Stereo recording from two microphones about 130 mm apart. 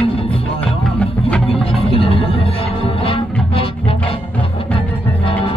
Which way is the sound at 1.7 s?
45° left (ahead or behind).